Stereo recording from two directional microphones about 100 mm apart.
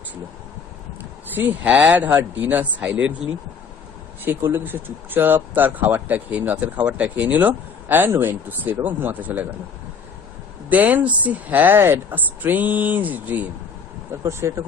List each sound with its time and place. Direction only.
1.3 s speech: 15° right (ahead or behind)
4.2 s speech: 25° right (ahead or behind)
10.7 s speech: 15° right (ahead or behind)
14.4 s speech: 35° right (ahead or behind)